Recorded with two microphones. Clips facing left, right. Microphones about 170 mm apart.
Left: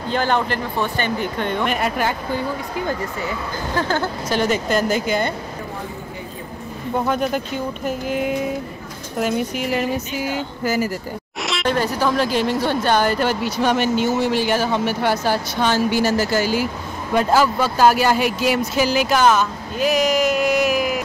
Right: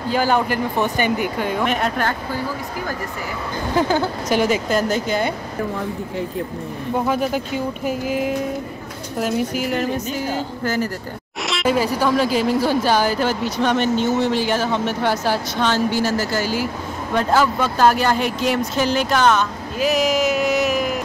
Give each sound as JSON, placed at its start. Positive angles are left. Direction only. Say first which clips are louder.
{"t": 0.1, "sound": "speech", "louder": "right 1 dB", "side_deg": -5}
{"t": 3.7, "sound": "speech", "louder": "right 3 dB", "side_deg": -10}
{"t": 7.1, "sound": "speech", "louder": "even", "side_deg": -5}
{"t": 11.4, "sound": "speech", "louder": "right 2 dB", "side_deg": 0}